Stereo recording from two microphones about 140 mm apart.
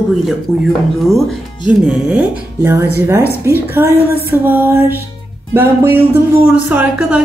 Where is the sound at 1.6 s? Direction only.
10° right (ahead or behind).